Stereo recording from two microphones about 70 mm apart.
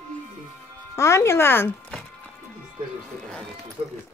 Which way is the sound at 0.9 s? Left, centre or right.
Left.